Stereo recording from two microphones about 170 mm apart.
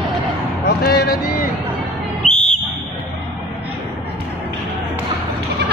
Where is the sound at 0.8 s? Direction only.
65° left (ahead or behind).